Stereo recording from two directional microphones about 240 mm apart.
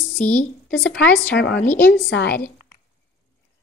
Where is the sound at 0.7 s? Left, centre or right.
Left.